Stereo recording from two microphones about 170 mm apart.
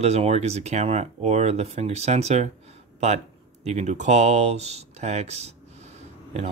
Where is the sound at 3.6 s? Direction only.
40° right (ahead or behind).